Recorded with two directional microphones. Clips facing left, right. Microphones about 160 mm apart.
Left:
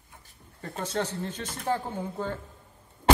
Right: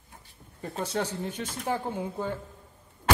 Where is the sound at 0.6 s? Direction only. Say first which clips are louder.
Even; 15° right (ahead or behind).